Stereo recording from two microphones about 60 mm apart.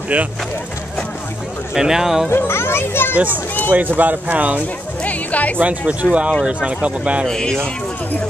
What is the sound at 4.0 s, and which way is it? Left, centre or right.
Speech, right.